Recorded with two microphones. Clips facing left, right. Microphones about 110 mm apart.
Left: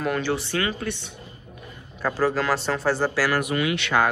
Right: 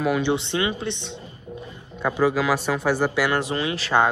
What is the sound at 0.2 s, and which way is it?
Speech, 20° right (ahead or behind).